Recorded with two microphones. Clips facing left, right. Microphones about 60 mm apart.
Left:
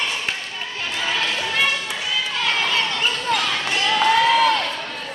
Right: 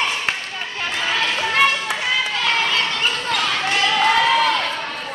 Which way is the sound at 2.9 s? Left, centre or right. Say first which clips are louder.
Even; centre.